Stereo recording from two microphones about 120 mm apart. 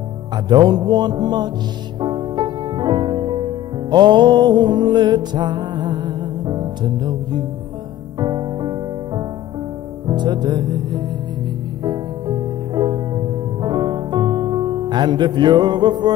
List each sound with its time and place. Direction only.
0.5 s music: 35° right (ahead or behind)